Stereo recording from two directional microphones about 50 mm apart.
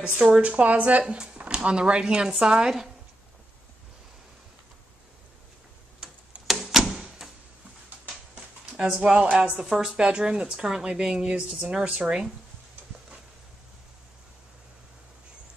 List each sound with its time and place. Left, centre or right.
0.0 s speech: right
1.4 s speech: centre
6.0 s tick-tock: centre
6.4 s door: centre
8.7 s speech: centre